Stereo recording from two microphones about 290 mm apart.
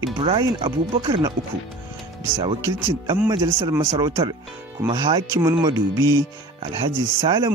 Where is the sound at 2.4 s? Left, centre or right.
Centre.